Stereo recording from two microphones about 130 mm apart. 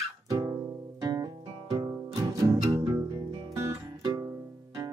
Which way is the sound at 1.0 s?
30° right (ahead or behind).